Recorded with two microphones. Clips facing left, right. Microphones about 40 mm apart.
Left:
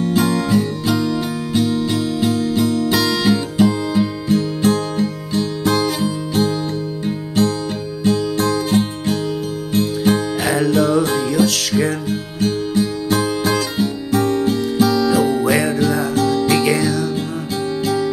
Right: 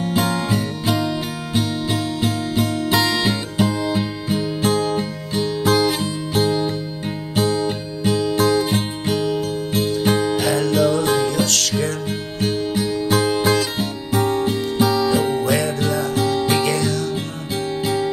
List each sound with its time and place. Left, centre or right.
0.0 s music: centre
10.4 s music: centre
12.4 s music: centre
15.4 s music: centre
16.3 s music: centre
16.6 s music: centre
17.6 s music: centre